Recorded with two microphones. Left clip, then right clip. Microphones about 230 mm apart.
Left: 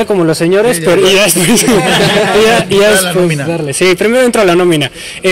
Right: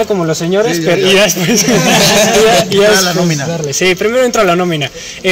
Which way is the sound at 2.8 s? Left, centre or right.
Left.